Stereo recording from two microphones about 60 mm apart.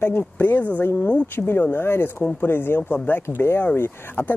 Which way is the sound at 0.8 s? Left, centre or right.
Left.